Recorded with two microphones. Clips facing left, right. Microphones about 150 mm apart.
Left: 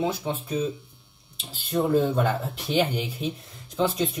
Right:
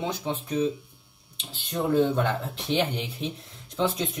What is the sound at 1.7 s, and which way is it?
Speech, 5° left (ahead or behind).